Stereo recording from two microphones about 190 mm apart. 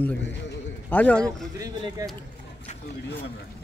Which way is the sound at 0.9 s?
5° left (ahead or behind).